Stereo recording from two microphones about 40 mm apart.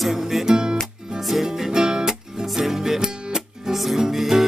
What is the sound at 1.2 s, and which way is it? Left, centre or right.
Music, centre.